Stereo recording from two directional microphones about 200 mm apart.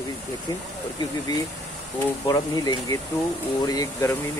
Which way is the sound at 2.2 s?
15° left (ahead or behind).